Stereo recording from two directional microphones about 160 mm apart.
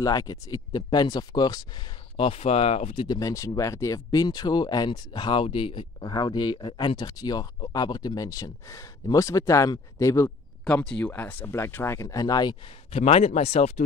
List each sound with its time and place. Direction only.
0.0 s speech: 20° left (ahead or behind)
3.2 s speech: 20° left (ahead or behind)
10.6 s speech: 5° left (ahead or behind); by 12.5 s 25° left (ahead or behind)
12.9 s speech: 40° left (ahead or behind)